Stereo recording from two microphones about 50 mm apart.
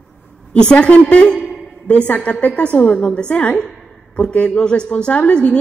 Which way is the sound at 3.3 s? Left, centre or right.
Left.